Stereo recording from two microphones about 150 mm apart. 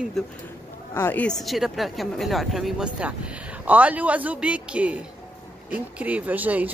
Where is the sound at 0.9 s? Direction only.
15° left (ahead or behind).